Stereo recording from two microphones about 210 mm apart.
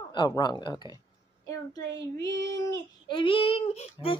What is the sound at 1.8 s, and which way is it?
Child singing, 60° right (ahead or behind).